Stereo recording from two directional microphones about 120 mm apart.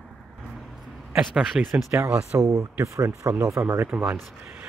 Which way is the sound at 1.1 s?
10° right (ahead or behind).